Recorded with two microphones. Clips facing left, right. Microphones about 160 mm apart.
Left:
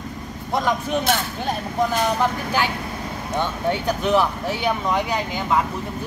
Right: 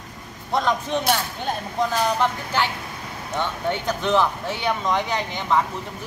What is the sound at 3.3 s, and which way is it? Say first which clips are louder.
Speech: left 2 dB; 15° left (ahead or behind).